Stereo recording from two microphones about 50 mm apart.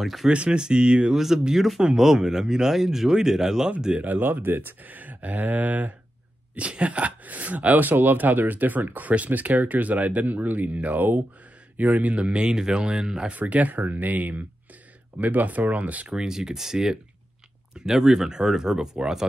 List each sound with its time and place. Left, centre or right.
0.0 s speech: centre
0.3 s speech: right
1.1 s speech: centre
3.9 s speech: right; by 13.3 s centre
13.3 s speech: right
16.2 s speech: centre